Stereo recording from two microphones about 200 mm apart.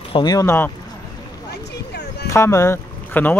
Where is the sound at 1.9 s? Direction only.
55° left (ahead or behind).